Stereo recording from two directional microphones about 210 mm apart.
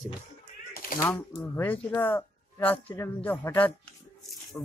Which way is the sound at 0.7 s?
45° left (ahead or behind).